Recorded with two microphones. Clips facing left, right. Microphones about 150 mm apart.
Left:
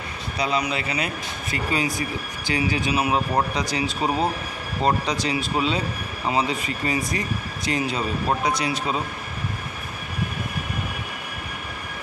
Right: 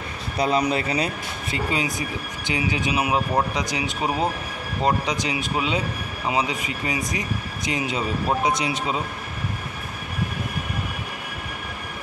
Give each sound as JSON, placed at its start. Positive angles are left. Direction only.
{"t": 0.4, "sound": "speech", "side_deg": -45}
{"t": 1.7, "sound": "speech", "side_deg": -20}